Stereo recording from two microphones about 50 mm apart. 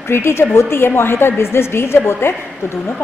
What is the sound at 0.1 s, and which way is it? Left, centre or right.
A woman's voice, left.